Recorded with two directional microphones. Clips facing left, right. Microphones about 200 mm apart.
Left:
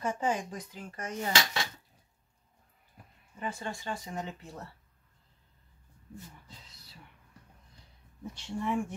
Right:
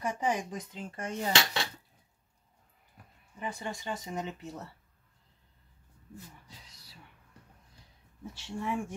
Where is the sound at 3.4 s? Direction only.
15° right (ahead or behind).